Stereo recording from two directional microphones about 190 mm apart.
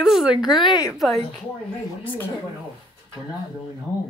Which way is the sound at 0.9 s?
Centre (ahead or behind).